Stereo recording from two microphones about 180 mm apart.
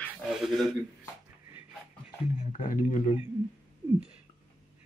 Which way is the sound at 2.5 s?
45° left (ahead or behind).